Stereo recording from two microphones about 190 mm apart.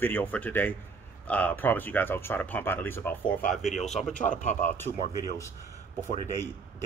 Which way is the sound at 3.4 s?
40° left (ahead or behind).